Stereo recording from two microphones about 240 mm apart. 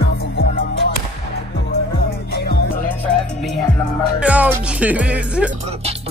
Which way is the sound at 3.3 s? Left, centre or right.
Centre.